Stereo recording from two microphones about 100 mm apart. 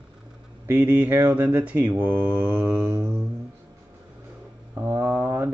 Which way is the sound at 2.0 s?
20° right (ahead or behind).